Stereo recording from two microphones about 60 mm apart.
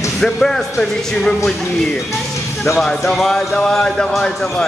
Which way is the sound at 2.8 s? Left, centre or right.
Centre.